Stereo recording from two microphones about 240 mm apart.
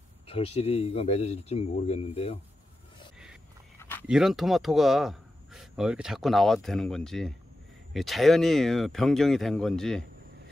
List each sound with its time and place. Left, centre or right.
0.3 s speech: left
4.1 s speech: centre